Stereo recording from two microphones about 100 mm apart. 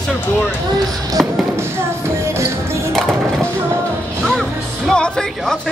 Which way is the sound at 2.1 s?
30° right (ahead or behind).